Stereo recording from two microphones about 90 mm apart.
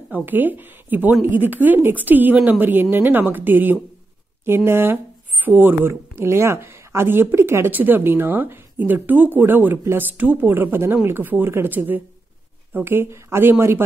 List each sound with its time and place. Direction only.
0.1 s speech: 20° right (ahead or behind)